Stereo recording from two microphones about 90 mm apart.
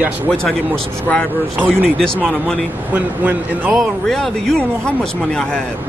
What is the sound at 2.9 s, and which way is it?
Speech, 20° right (ahead or behind).